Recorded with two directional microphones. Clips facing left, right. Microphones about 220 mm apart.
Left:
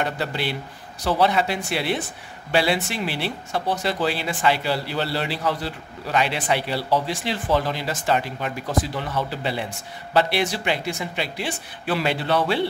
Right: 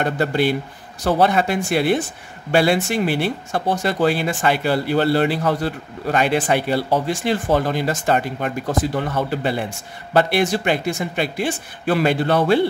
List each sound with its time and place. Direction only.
0.0 s speech: 50° right (ahead or behind)